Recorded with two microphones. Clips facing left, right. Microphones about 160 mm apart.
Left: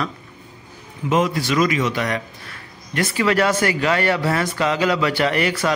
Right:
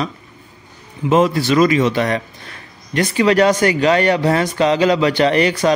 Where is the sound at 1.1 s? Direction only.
30° right (ahead or behind).